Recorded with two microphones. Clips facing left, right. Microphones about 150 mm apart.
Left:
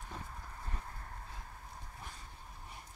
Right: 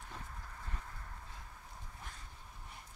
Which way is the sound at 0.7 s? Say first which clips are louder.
Left 2 dB; 35° left (ahead or behind).